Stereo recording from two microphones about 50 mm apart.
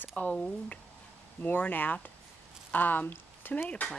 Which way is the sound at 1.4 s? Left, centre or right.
Left.